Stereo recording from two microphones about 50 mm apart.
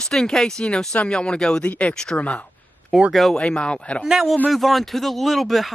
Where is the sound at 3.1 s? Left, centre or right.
Centre.